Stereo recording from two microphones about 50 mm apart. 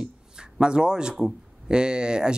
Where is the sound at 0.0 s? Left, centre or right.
Centre.